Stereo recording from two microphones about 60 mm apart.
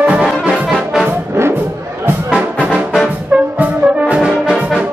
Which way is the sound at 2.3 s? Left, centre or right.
Centre.